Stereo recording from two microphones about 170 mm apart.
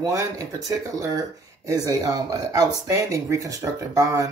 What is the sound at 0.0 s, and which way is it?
Speech, 20° right (ahead or behind).